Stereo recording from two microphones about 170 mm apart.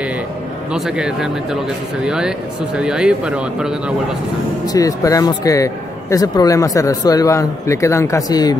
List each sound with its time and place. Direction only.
0.7 s speech: 5° right (ahead or behind)
4.7 s a man's voice: 20° left (ahead or behind)